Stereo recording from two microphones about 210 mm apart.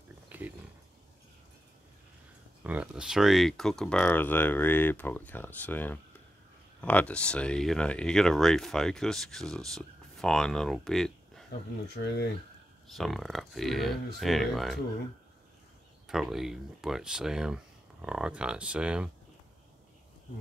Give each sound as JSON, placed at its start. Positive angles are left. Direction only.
{"t": 0.3, "sound": "wild animals", "side_deg": -10}
{"t": 2.6, "sound": "speech", "side_deg": -5}
{"t": 11.9, "sound": "speech", "side_deg": 50}
{"t": 12.8, "sound": "speech", "side_deg": 0}
{"t": 16.1, "sound": "speech", "side_deg": 0}